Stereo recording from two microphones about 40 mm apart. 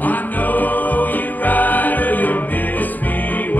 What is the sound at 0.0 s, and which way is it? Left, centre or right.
Music, left.